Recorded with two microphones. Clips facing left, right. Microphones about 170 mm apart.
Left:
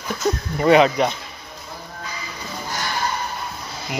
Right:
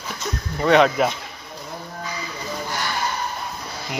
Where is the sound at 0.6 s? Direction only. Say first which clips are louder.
Left 1 dB; 5° left (ahead or behind).